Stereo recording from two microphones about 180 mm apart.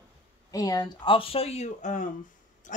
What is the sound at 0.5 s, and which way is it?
Speech, 20° left (ahead or behind).